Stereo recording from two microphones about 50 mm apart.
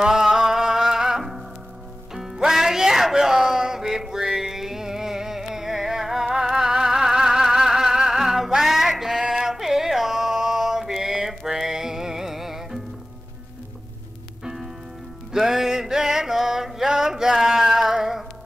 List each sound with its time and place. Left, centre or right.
0.0 s music: centre
14.4 s music: centre